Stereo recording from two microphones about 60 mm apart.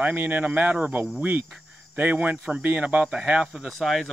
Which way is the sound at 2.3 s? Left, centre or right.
Centre.